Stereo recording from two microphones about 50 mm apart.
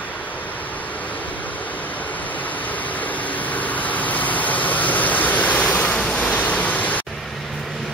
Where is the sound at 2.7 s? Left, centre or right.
Left.